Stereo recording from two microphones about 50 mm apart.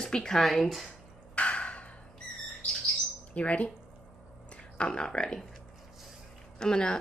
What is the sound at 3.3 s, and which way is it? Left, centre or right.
Speech, left.